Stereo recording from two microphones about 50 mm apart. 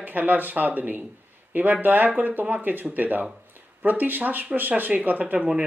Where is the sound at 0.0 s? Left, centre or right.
Right.